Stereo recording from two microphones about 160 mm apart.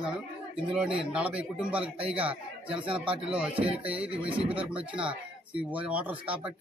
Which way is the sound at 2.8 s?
35° right (ahead or behind).